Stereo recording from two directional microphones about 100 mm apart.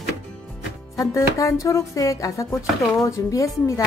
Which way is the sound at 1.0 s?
30° left (ahead or behind).